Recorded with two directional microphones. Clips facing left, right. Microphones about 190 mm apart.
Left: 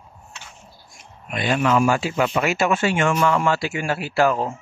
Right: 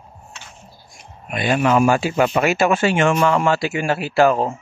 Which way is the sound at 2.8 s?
75° right (ahead or behind).